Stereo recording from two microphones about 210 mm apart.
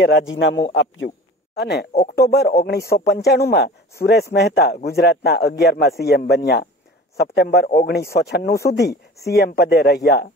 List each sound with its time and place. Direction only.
0.0 s a man's voice: 60° left (ahead or behind)